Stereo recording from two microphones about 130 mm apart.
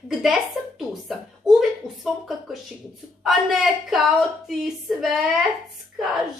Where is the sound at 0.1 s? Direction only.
Centre (ahead or behind).